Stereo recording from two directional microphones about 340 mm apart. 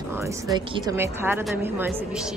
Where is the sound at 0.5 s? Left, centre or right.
Centre.